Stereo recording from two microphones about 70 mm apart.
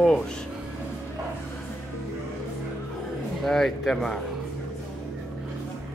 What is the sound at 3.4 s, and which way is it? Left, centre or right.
Speech, centre.